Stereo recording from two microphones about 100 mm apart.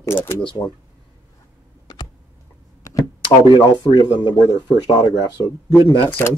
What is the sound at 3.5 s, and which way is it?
Speech, 50° left (ahead or behind).